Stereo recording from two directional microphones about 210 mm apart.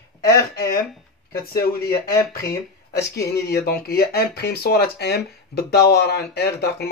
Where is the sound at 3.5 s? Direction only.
45° left (ahead or behind).